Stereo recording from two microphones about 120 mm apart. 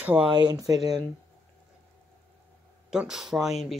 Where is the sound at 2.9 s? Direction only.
5° right (ahead or behind).